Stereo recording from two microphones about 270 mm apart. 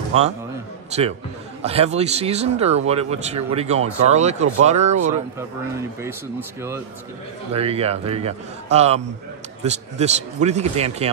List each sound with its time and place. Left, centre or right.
0.1 s speech: right
7.5 s speech: right